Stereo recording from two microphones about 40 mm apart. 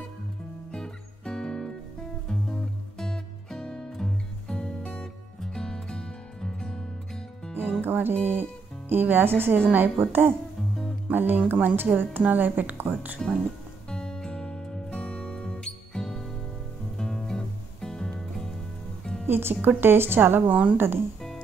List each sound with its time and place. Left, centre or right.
0.7 s music: centre
7.8 s speech: right
11.1 s speech: right
13.2 s speech: centre
13.8 s music: centre
19.2 s speech: right